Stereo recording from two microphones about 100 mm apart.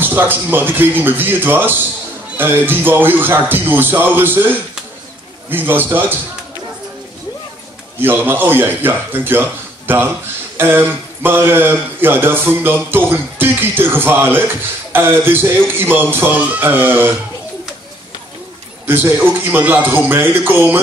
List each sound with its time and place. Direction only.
0.0 s speech: 20° right (ahead or behind)
8.0 s speech: 20° right (ahead or behind)
18.9 s speech: 20° right (ahead or behind)